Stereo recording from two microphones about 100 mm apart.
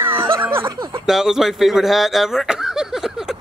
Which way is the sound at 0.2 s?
25° right (ahead or behind).